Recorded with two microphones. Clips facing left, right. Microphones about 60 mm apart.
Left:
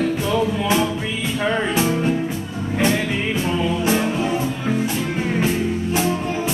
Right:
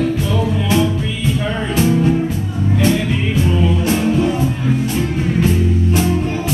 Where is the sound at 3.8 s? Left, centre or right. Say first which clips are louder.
Right 4 dB; centre.